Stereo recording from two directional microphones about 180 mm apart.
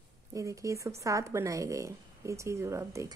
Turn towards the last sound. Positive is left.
turn(degrees=-15)  # may be behind; listen again after turning